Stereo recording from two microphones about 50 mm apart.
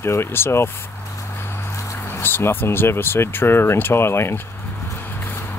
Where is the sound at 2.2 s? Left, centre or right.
Left.